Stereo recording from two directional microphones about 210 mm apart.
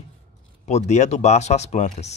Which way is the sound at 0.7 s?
35° left (ahead or behind).